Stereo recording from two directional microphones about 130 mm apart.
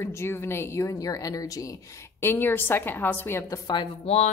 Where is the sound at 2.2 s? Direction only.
15° left (ahead or behind).